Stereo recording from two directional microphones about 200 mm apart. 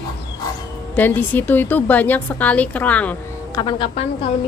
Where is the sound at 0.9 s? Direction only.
10° left (ahead or behind).